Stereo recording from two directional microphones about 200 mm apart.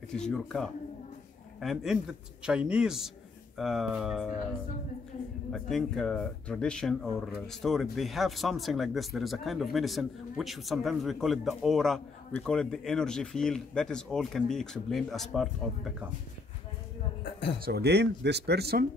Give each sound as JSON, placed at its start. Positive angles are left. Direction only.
{"t": 0.1, "sound": "speech", "side_deg": 5}
{"t": 5.5, "sound": "speech", "side_deg": 0}
{"t": 17.2, "sound": "a sound", "side_deg": 60}
{"t": 17.6, "sound": "speech", "side_deg": -55}